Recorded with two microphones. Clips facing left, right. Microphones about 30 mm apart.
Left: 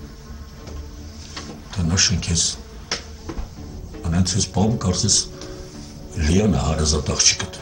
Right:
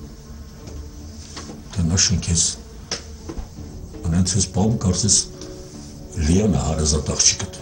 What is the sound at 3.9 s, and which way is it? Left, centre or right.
Speech, left.